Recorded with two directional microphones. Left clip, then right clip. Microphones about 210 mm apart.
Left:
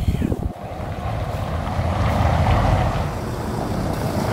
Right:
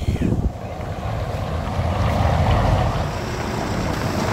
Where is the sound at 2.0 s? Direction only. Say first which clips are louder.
Even; centre (ahead or behind).